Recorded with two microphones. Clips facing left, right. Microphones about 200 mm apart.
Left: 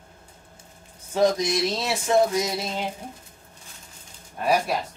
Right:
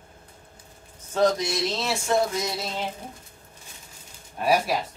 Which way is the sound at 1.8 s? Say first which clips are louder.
Left 3 dB; 15° left (ahead or behind).